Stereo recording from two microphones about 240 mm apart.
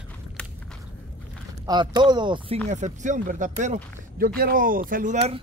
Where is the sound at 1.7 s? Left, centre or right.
Centre.